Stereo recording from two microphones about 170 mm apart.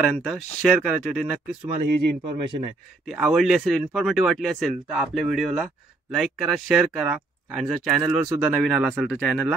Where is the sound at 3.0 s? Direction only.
Centre (ahead or behind).